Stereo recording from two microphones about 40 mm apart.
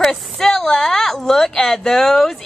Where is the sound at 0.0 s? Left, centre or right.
Centre.